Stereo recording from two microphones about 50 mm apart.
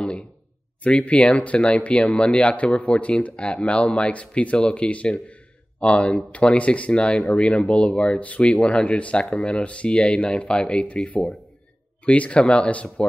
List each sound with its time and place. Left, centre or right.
0.8 s speech: left
12.0 s speech: left